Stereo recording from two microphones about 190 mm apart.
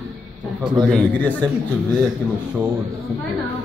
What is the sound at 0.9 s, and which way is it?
Speech, 5° left (ahead or behind).